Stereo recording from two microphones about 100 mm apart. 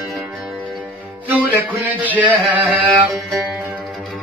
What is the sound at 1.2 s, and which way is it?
Music, 15° right (ahead or behind).